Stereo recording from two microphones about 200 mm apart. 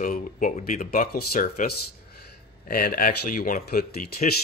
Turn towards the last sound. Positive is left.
turn(degrees=50)  # may be behind; listen again after turning